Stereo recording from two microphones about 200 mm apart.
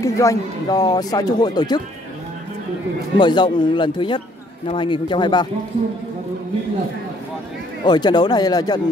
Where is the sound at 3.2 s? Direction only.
25° left (ahead or behind).